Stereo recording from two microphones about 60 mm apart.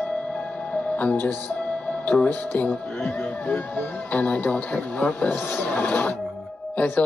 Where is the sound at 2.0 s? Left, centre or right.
Left.